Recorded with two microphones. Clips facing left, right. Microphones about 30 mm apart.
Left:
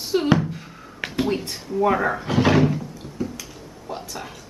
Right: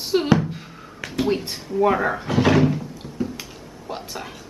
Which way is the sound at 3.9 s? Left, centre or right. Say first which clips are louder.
Even; right.